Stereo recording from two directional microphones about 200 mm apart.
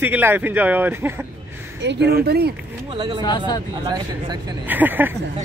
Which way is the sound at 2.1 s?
55° right (ahead or behind).